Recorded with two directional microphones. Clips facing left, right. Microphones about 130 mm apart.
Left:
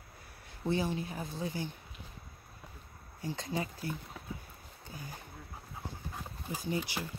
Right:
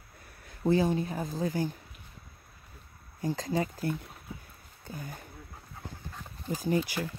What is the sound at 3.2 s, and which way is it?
Speech, 40° right (ahead or behind).